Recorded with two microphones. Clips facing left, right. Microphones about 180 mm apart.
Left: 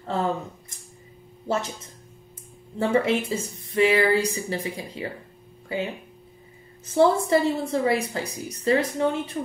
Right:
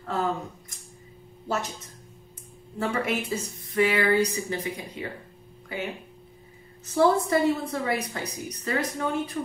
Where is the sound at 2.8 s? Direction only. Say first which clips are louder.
Left 6 dB; 25° left (ahead or behind).